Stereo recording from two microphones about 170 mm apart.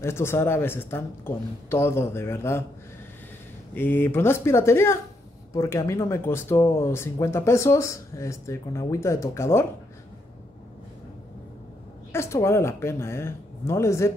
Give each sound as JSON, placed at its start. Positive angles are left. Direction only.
{"t": 0.0, "sound": "speech", "side_deg": 15}
{"t": 3.7, "sound": "speech", "side_deg": 10}
{"t": 12.1, "sound": "speech", "side_deg": 15}